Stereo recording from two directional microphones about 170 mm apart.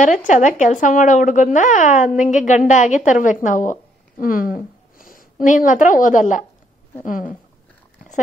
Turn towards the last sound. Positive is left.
turn(degrees=50)  # may be behind; listen again after turning